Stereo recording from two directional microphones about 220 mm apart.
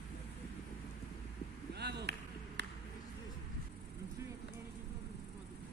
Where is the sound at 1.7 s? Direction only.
50° right (ahead or behind).